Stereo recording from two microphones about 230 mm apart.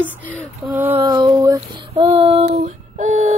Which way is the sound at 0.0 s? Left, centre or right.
Centre.